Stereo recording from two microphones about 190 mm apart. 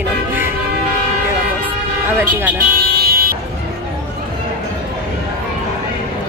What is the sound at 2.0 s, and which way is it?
Speech, 10° right (ahead or behind).